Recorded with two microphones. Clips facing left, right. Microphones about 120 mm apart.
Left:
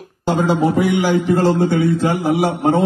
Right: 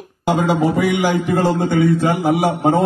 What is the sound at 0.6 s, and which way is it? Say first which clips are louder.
A man's voice: left 1 dB; 60° right (ahead or behind).